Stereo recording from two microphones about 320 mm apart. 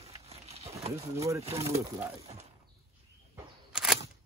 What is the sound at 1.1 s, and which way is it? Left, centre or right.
Speech, centre.